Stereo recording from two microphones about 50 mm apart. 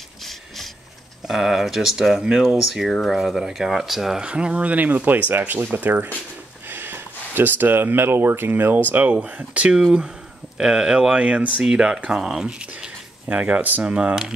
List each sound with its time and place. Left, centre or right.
1.2 s speech: centre
4.2 s speech: right
6.7 s speech: right
9.8 s speech: centre
11.1 s speech: right
11.6 s speech: centre
13.3 s speech: right